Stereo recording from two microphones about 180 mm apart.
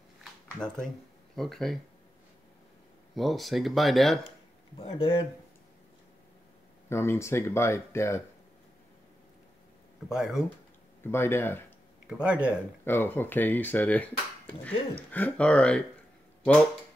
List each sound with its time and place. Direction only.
0.2 s a sound: 5° left (ahead or behind)
1.3 s speech: centre (ahead or behind)
3.2 s speech: centre (ahead or behind)
4.7 s speech: 30° left (ahead or behind)
6.9 s speech: 15° left (ahead or behind)
10.0 s speech: 5° right (ahead or behind)
11.1 s speech: 15° left (ahead or behind)
12.1 s speech: 5° right (ahead or behind)
12.8 s speech: 10° left (ahead or behind)